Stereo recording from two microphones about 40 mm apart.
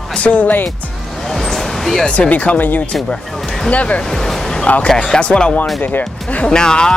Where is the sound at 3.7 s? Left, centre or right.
Left.